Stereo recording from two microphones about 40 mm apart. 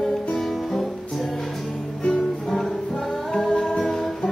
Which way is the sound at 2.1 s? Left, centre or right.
Centre.